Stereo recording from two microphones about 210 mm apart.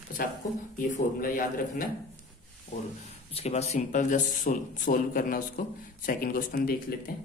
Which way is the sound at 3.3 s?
30° left (ahead or behind).